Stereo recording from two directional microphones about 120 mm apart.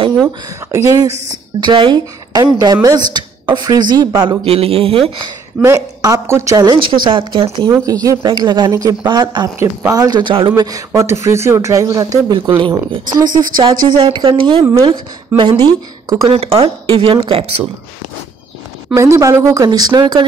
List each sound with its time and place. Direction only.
0.7 s speech: 25° right (ahead or behind)
1.6 s a woman's voice: 40° right (ahead or behind)
4.5 s a man's voice: 55° right (ahead or behind)
5.6 s speech: 25° right (ahead or behind); by 7.4 s 45° right (ahead or behind)
7.7 s speech: 30° right (ahead or behind)
8.3 s a woman's voice: 40° right (ahead or behind)
9.6 s a woman's voice: 25° right (ahead or behind); by 10.5 s 45° right (ahead or behind)
10.6 s a woman's voice: 30° right (ahead or behind)
16.3 s speech: 50° right (ahead or behind)
18.9 s a woman's voice: 25° right (ahead or behind)